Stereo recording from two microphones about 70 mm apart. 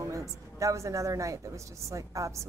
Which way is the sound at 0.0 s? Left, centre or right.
Right.